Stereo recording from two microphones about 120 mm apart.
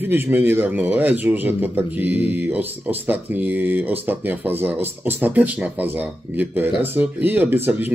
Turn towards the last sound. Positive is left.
turn(degrees=-15)  # may be behind; listen again after turning